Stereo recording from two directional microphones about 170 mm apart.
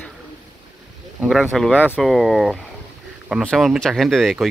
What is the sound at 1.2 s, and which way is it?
Speech, centre (ahead or behind).